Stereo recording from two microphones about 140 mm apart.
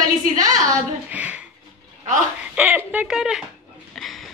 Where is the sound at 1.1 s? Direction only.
10° right (ahead or behind).